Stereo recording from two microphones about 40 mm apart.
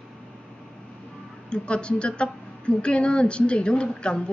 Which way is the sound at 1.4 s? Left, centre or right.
Left.